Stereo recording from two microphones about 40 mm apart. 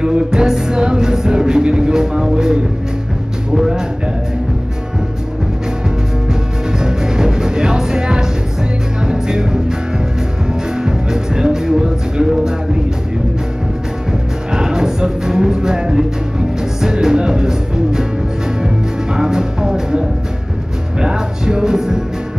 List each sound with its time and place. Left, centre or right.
0.0 s music: centre
6.8 s music: centre
14.5 s music: centre
19.1 s music: centre